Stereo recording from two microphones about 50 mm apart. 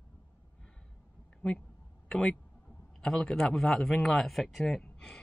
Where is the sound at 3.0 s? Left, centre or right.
Centre.